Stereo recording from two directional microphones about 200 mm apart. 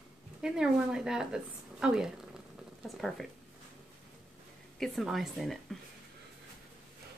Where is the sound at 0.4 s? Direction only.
5° right (ahead or behind).